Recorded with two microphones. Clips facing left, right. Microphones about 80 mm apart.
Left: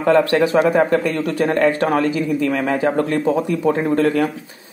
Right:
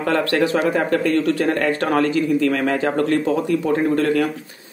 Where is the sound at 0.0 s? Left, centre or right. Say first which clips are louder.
Left 4 dB; left.